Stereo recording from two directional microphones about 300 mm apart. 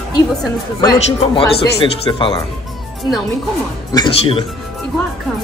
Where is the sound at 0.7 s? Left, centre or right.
Centre.